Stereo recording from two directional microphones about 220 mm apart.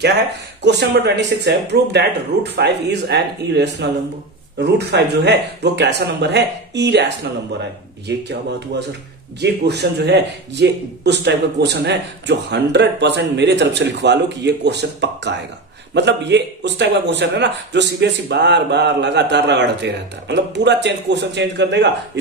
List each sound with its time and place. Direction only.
0.0 s a man's voice: 50° right (ahead or behind)
8.2 s a man's voice: 50° right (ahead or behind)